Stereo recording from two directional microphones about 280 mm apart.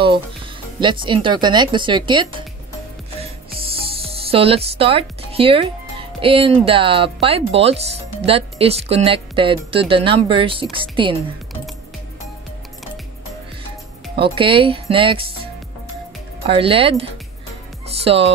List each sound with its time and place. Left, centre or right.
0.7 s speech: centre
14.1 s speech: centre
16.4 s speech: centre